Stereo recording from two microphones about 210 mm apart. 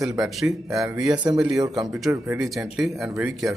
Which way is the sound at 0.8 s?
15° right (ahead or behind).